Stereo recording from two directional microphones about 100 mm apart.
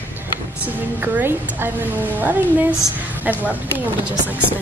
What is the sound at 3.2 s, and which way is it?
Speech, 15° right (ahead or behind).